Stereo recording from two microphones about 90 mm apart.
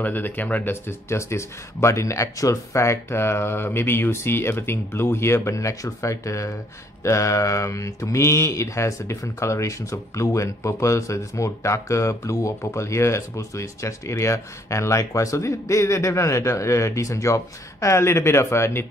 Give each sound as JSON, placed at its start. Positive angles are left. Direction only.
{"t": 0.0, "sound": "speech", "side_deg": 20}